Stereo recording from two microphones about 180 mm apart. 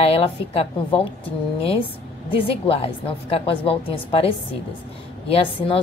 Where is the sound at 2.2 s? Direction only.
30° left (ahead or behind).